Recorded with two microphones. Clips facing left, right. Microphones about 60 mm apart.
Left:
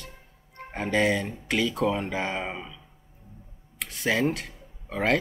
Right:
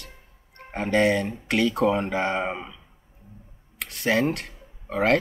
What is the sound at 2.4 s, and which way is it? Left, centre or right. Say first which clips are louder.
Speech: right 5 dB; centre.